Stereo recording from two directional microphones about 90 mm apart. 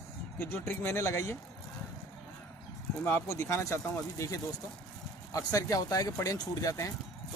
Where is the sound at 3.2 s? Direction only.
30° left (ahead or behind).